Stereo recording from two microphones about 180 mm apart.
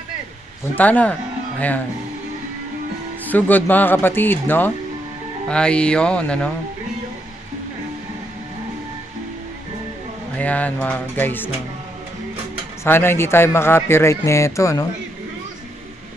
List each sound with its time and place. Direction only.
0.7 s speech: 10° left (ahead or behind)
3.3 s speech: 10° left (ahead or behind)
10.3 s speech: 10° left (ahead or behind)
12.8 s speech: 10° left (ahead or behind)